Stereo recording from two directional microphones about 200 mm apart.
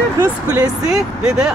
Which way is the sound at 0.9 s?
5° right (ahead or behind).